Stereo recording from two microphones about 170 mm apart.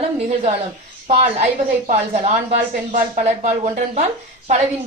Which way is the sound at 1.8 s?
40° right (ahead or behind).